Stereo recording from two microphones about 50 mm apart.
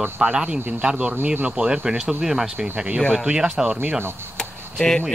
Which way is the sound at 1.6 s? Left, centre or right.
Centre.